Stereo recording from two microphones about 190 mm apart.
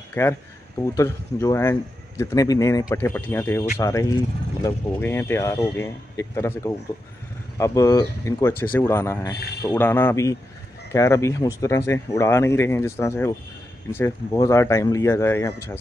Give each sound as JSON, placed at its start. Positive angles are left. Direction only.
{"t": 0.1, "sound": "speech", "side_deg": 15}